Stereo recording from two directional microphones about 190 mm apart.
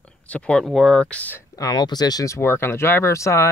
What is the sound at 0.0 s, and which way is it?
Speech, 5° left (ahead or behind).